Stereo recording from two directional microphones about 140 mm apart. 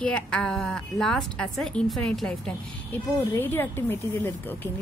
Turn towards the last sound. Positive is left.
turn(degrees=15)  # may be behind; listen again after turning